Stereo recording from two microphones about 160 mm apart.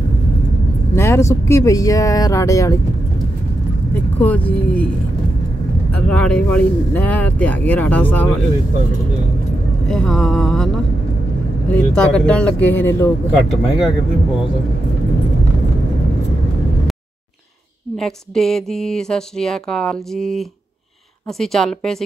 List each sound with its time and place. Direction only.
0.9 s speech: 15° left (ahead or behind)
3.9 s speech: 10° left (ahead or behind)
6.0 s speech: 5° left (ahead or behind)
9.8 s speech: 5° left (ahead or behind)
11.7 s speech: 5° left (ahead or behind)
13.3 s speech: 5° right (ahead or behind)
17.9 s speech: 5° left (ahead or behind)